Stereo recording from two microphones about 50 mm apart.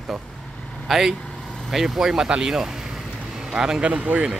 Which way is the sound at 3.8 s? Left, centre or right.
Right.